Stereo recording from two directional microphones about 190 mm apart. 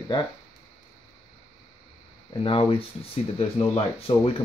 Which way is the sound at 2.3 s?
25° left (ahead or behind).